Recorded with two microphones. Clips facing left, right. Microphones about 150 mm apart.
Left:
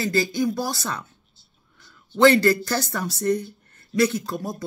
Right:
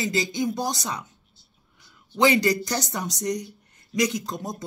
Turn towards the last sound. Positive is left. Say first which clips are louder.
# left 2 dB
turn(degrees=-20)  # may be behind; listen again after turning